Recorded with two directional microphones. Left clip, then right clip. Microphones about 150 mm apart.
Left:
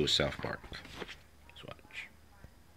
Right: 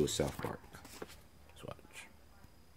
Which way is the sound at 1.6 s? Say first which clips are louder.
Left 4 dB; 35° right (ahead or behind).